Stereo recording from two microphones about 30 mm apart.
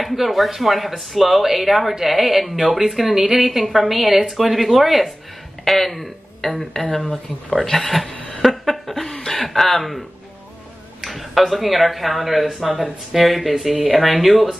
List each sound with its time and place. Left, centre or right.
0.0 s a woman's voice: centre
6.9 s speech: centre
8.4 s a sound: centre
11.0 s speech: centre